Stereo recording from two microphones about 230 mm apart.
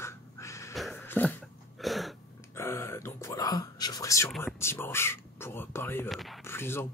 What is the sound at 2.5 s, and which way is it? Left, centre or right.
Whispering, centre.